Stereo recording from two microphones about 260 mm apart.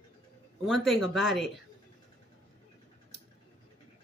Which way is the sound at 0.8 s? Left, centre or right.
Centre.